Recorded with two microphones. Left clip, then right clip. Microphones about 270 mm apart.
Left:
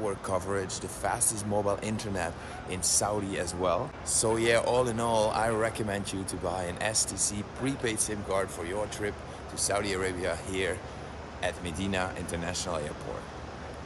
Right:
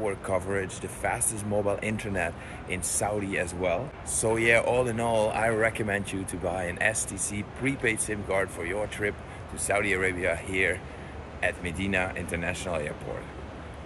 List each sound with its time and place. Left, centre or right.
0.0 s speech: centre